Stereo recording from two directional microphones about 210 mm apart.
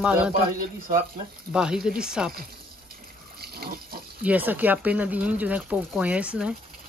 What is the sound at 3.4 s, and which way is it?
Water, 50° right (ahead or behind).